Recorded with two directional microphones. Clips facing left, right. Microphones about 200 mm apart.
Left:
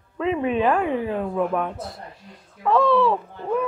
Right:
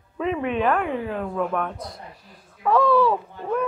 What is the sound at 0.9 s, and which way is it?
Speech, 20° left (ahead or behind).